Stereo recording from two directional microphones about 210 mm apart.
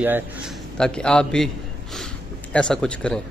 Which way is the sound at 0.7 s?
5° left (ahead or behind).